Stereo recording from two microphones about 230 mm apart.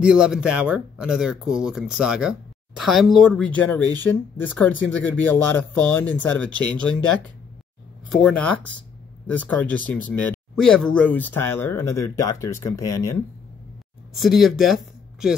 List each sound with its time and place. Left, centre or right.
0.0 s speech: centre
14.1 s speech: centre